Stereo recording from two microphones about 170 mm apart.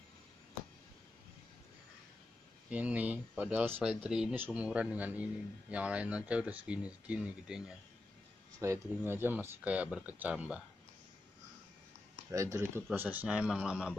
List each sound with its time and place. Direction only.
2.7 s a man's voice: 10° right (ahead or behind)
8.5 s a man's voice: 15° right (ahead or behind)
12.3 s a man's voice: 20° right (ahead or behind)